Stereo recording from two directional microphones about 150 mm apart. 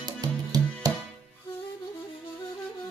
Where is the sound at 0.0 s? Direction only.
25° right (ahead or behind).